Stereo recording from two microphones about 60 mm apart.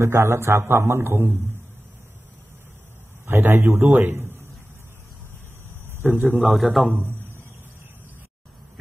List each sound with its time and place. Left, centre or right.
0.0 s a man's voice: right
3.3 s a man's voice: right
5.9 s a man's voice: right
6.4 s a man's voice: centre
6.9 s a man's voice: right